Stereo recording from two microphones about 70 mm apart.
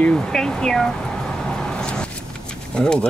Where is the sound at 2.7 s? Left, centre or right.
Centre.